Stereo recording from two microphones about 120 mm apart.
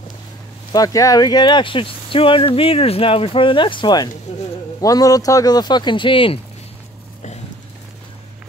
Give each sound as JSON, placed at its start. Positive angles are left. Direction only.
{"t": 0.7, "sound": "speech", "side_deg": 30}